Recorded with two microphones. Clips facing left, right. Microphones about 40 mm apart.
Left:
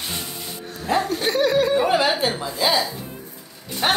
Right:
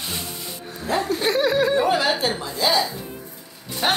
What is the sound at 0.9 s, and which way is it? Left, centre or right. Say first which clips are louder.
Snicker: even; centre.